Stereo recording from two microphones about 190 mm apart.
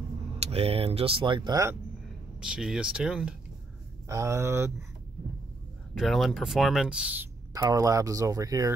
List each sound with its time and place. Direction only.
0.4 s speech: 30° right (ahead or behind)
2.4 s speech: 5° right (ahead or behind)
4.1 s speech: 15° right (ahead or behind)
5.9 s speech: centre (ahead or behind)
7.5 s speech: 20° right (ahead or behind)